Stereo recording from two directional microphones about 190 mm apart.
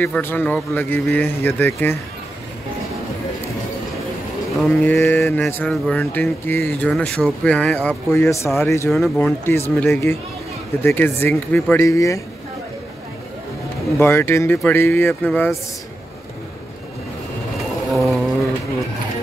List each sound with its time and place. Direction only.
0.0 s speech: 10° left (ahead or behind)
4.6 s speech: centre (ahead or behind)
8.9 s speech: centre (ahead or behind)
9.8 s speech: 10° left (ahead or behind)
13.9 s speech: 15° left (ahead or behind)
17.9 s mantra: centre (ahead or behind)